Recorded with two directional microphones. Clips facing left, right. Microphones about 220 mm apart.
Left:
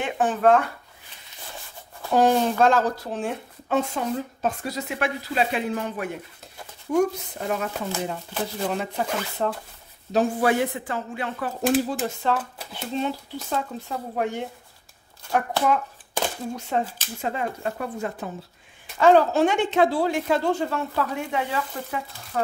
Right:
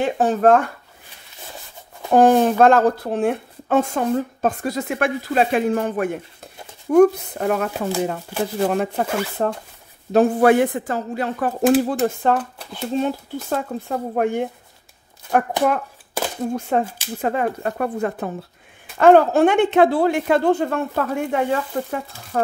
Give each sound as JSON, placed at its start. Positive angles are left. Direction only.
{"t": 0.0, "sound": "speech", "side_deg": -40}
{"t": 2.0, "sound": "speech", "side_deg": -50}
{"t": 10.1, "sound": "speech", "side_deg": -55}
{"t": 16.5, "sound": "speech", "side_deg": -55}